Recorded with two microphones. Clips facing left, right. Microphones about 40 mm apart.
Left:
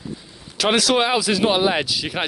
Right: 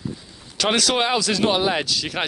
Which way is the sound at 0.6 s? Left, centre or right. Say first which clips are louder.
Left 2 dB; centre.